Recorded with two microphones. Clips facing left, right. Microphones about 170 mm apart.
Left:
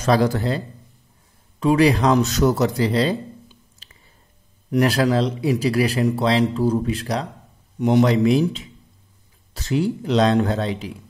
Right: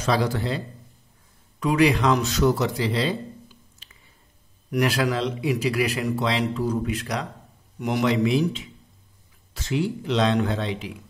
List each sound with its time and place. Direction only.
0.0 s speech: 45° left (ahead or behind)
1.6 s speech: 30° left (ahead or behind)
3.8 s a sound: 35° left (ahead or behind)
4.7 s speech: 35° left (ahead or behind)